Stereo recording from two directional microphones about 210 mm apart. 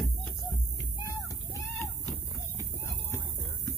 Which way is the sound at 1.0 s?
15° left (ahead or behind).